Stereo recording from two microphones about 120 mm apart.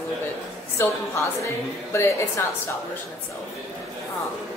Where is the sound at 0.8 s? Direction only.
20° left (ahead or behind).